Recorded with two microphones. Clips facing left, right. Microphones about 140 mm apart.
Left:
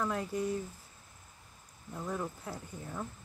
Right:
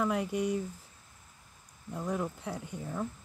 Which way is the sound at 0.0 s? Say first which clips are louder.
Right 4 dB; 10° right (ahead or behind).